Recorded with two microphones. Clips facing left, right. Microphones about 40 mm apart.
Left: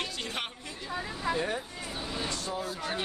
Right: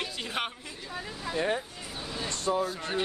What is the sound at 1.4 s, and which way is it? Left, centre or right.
Speech, centre.